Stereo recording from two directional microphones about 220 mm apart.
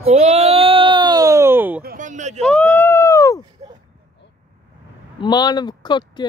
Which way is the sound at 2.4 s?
5° left (ahead or behind).